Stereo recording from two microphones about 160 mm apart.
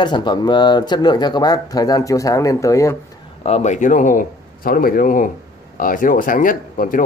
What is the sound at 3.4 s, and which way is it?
Speech, 45° left (ahead or behind).